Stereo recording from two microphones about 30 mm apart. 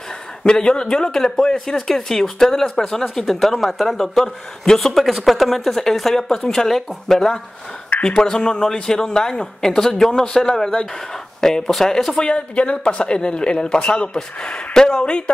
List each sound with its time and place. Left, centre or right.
0.4 s speech: left
1.1 s speech: centre
4.9 s speech: centre
8.0 s speech: left
12.3 s speech: left; by 15.0 s centre
15.0 s speech: left